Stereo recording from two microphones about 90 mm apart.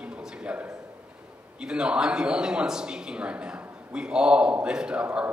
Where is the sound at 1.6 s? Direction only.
10° right (ahead or behind).